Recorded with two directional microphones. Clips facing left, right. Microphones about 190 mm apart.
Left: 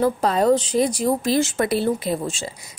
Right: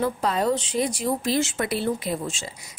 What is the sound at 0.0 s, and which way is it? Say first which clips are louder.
A woman's voice: left 5 dB; 40° left (ahead or behind).